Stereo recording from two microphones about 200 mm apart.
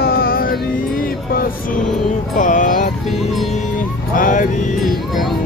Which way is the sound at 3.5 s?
40° left (ahead or behind).